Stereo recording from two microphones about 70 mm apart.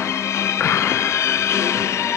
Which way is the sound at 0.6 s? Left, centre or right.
Left.